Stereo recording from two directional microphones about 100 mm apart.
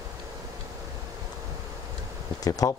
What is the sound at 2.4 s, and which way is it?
Speech, 35° left (ahead or behind).